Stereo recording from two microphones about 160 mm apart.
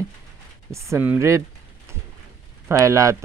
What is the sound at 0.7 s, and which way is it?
Speech, 15° right (ahead or behind).